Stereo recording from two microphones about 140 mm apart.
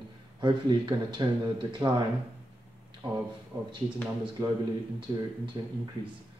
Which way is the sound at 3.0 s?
35° right (ahead or behind).